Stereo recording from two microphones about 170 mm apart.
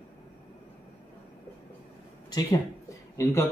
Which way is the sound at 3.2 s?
15° left (ahead or behind).